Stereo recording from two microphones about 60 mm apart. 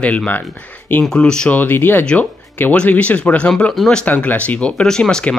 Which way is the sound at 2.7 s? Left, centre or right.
Left.